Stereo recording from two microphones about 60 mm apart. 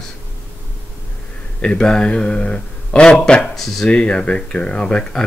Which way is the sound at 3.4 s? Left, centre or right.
Centre.